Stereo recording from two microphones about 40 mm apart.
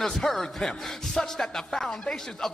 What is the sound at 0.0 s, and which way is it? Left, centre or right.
Speech, centre.